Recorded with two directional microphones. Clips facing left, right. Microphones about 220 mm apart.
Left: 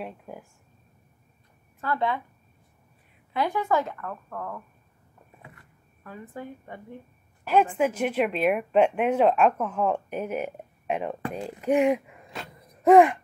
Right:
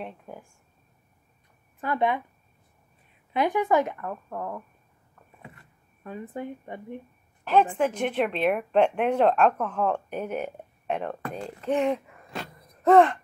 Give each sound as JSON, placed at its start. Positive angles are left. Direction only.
{"t": 0.0, "sound": "speech", "side_deg": 5}
{"t": 1.8, "sound": "speech", "side_deg": -15}
{"t": 3.3, "sound": "speech", "side_deg": -20}
{"t": 6.0, "sound": "speech", "side_deg": -20}
{"t": 7.7, "sound": "speech", "side_deg": 5}